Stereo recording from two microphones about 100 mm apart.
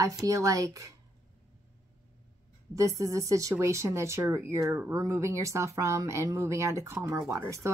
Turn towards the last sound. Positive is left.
turn(degrees=-30)  # may be behind; listen again after turning